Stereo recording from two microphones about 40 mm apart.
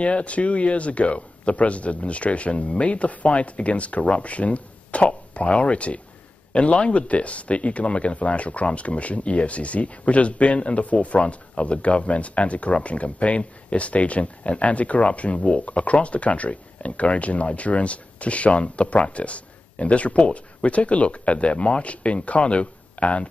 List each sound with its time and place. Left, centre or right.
0.0 s speech: left